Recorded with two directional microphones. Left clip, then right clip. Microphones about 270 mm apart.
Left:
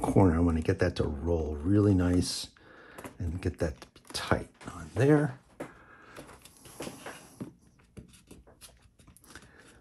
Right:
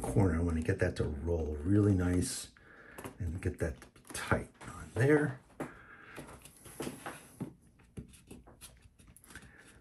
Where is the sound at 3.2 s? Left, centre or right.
Centre.